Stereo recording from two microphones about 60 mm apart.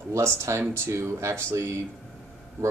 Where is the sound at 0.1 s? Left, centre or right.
Right.